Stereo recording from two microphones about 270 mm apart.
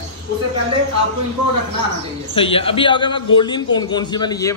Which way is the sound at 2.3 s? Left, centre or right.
Centre.